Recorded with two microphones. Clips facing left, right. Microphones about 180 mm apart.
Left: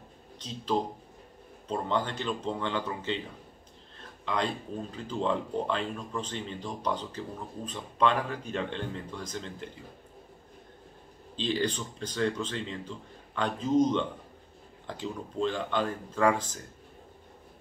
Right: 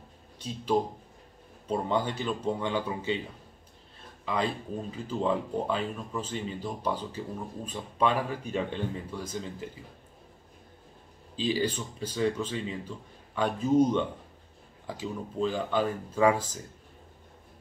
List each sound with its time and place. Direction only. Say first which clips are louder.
0.4 s speech: right 2 dB; 10° right (ahead or behind)
4.3 s speech: right 1 dB; 5° right (ahead or behind)
11.3 s speech: right 1 dB; 5° right (ahead or behind)